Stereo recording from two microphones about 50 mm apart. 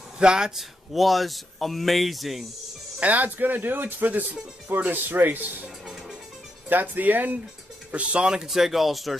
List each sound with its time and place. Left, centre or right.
0.2 s speech: centre
0.6 s speech: centre
3.0 s speech: right
6.7 s speech: right
7.9 s speech: right
8.5 s speech: centre